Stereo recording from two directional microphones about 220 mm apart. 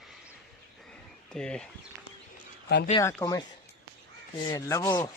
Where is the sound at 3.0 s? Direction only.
15° left (ahead or behind).